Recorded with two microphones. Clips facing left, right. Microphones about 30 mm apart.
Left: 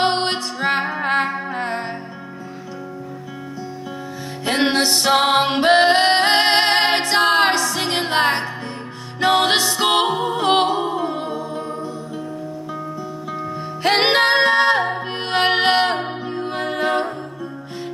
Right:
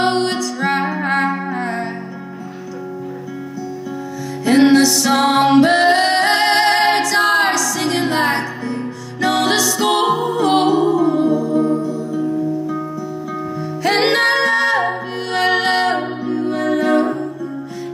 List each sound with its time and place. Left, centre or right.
0.0 s music: left
4.5 s music: left
9.4 s music: left
10.1 s music: left
13.8 s music: left
14.3 s music: left